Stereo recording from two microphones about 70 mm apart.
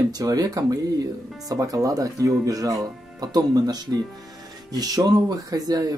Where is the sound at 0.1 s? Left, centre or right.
Right.